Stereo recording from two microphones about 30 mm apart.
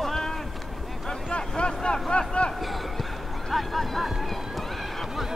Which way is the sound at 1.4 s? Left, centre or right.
Left.